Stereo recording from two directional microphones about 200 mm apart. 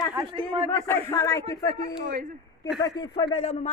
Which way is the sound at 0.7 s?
10° left (ahead or behind).